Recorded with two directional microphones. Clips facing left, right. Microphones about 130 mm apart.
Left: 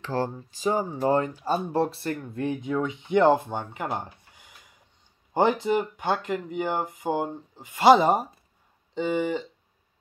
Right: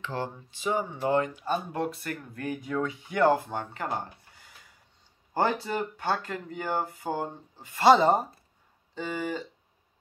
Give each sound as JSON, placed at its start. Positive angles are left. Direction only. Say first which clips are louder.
{"t": 0.0, "sound": "speech", "louder": "left 5 dB", "side_deg": 40}